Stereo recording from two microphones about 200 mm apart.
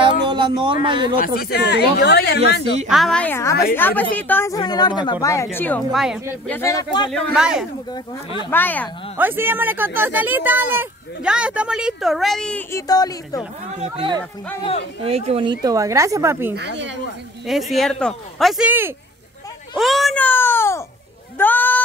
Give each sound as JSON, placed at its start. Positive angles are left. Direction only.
{"t": 0.0, "sound": "a sound", "side_deg": -20}
{"t": 0.8, "sound": "speech", "side_deg": -25}
{"t": 1.2, "sound": "speech", "side_deg": 50}
{"t": 2.9, "sound": "speech", "side_deg": 0}
{"t": 5.9, "sound": "speech", "side_deg": 0}
{"t": 6.4, "sound": "speech", "side_deg": 10}
{"t": 7.1, "sound": "speech", "side_deg": 5}
{"t": 8.5, "sound": "speech", "side_deg": 10}
{"t": 9.1, "sound": "speech", "side_deg": -10}
{"t": 12.8, "sound": "speech", "side_deg": 20}
{"t": 13.7, "sound": "speech", "side_deg": -25}
{"t": 16.5, "sound": "speech", "side_deg": -65}
{"t": 17.5, "sound": "speech", "side_deg": 0}